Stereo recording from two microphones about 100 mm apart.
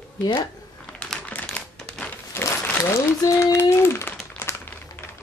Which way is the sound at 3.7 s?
25° left (ahead or behind).